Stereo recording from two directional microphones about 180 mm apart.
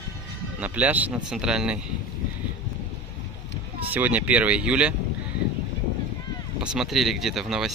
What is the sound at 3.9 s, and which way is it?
Speech, 10° right (ahead or behind).